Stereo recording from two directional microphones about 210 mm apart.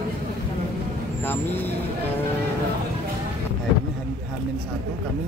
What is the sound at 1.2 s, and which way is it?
Speech, 10° left (ahead or behind).